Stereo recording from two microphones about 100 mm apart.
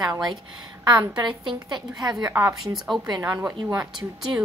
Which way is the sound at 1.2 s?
50° right (ahead or behind).